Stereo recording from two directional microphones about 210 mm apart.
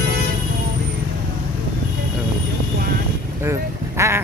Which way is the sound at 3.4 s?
10° right (ahead or behind).